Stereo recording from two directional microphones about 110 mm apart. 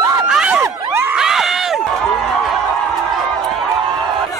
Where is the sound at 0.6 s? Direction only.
25° right (ahead or behind).